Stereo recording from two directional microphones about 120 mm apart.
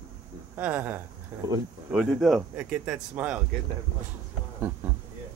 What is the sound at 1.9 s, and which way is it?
Speech, centre (ahead or behind).